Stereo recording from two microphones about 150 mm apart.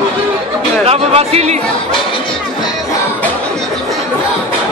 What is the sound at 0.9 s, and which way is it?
Music, 45° right (ahead or behind).